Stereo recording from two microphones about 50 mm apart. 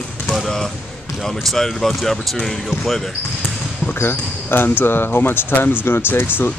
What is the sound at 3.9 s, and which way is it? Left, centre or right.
Speech, left.